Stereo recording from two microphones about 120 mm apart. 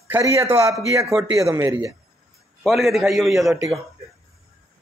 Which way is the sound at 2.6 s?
Centre (ahead or behind).